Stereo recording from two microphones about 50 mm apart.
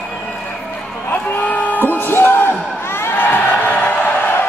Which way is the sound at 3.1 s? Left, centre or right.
Left.